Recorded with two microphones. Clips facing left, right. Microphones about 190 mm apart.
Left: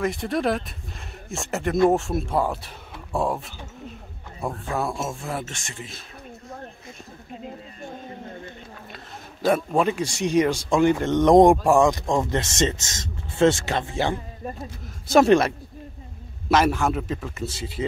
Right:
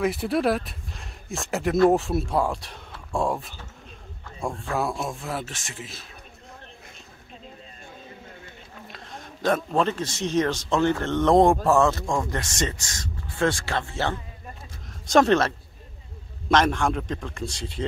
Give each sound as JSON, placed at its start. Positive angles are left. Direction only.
{"t": 0.0, "sound": "speech", "side_deg": -5}
{"t": 8.9, "sound": "speech", "side_deg": 10}